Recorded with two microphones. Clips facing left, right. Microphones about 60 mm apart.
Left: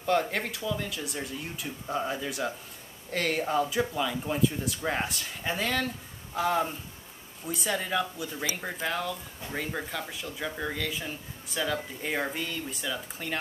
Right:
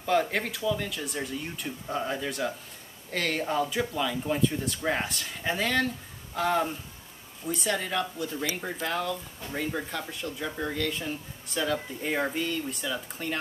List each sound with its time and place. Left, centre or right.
0.0 s speech: centre